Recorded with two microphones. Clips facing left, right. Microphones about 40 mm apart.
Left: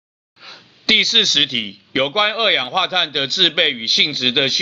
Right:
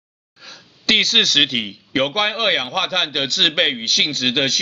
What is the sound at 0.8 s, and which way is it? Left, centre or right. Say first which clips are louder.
Speech: left 1 dB; centre.